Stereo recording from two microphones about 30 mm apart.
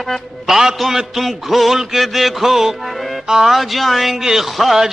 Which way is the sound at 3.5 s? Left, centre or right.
Centre.